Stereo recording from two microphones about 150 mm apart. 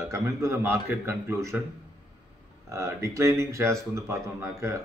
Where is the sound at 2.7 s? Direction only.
20° right (ahead or behind).